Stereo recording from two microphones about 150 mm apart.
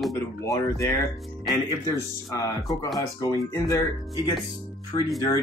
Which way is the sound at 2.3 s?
20° left (ahead or behind).